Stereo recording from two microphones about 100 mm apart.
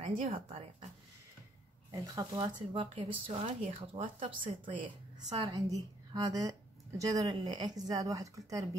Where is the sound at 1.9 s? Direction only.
35° right (ahead or behind).